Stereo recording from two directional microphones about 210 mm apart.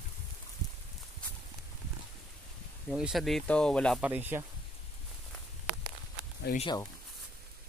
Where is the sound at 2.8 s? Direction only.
Centre (ahead or behind).